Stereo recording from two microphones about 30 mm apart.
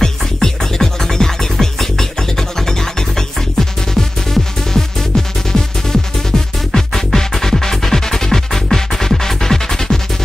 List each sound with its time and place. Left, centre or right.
0.0 s music: centre